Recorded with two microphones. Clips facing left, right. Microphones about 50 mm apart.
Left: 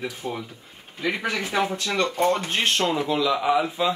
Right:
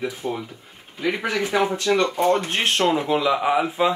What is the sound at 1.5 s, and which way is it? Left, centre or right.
Speech, centre.